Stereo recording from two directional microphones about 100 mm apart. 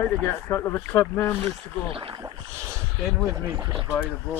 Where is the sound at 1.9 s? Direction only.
65° right (ahead or behind).